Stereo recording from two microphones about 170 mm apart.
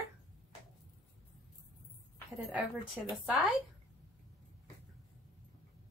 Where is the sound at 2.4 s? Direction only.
Centre (ahead or behind).